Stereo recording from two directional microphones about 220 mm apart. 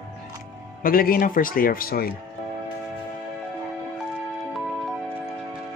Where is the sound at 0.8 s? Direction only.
40° left (ahead or behind).